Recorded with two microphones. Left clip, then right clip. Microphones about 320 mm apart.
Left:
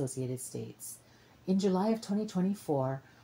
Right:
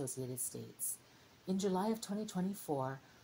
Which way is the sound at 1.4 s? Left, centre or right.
Right.